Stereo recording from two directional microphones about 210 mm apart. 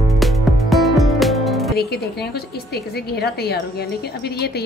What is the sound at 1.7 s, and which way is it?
Speech, 50° left (ahead or behind).